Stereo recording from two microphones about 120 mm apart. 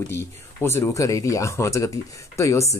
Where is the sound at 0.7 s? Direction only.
25° left (ahead or behind).